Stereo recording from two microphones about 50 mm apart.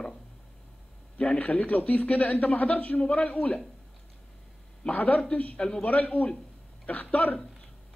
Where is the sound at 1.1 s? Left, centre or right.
Left.